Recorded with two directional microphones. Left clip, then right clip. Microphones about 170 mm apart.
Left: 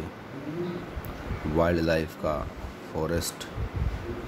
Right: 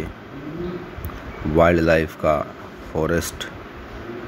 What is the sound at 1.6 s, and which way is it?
Speech, 20° right (ahead or behind).